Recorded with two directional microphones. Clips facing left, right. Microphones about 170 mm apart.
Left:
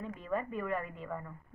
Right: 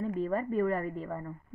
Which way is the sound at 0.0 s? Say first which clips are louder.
Right 6 dB; 35° right (ahead or behind).